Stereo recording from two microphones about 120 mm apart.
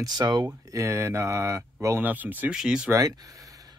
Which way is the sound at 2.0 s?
15° right (ahead or behind).